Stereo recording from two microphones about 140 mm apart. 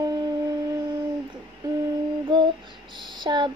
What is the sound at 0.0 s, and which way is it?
Shofar, 30° right (ahead or behind).